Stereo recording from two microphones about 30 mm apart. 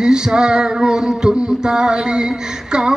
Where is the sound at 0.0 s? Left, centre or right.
Right.